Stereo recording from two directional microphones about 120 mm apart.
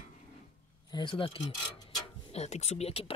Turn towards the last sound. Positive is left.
turn(degrees=55)  # may be behind; listen again after turning